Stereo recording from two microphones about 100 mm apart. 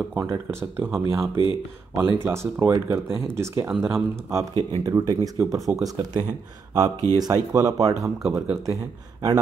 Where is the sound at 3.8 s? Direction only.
30° right (ahead or behind).